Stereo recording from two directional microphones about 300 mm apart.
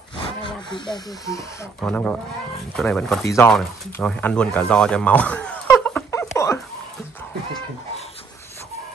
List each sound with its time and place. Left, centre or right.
1.3 s speech: centre